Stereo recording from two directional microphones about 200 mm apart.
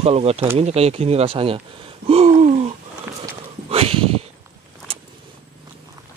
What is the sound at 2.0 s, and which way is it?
Gasp, 30° right (ahead or behind).